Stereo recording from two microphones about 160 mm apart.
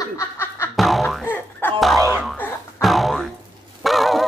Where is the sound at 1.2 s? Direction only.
10° left (ahead or behind).